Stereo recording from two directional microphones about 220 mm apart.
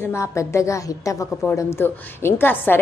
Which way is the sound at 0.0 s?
10° left (ahead or behind).